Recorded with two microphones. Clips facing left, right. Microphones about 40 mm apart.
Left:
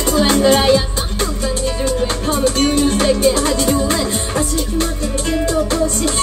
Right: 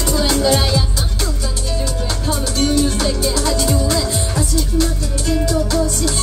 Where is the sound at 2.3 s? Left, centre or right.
Left.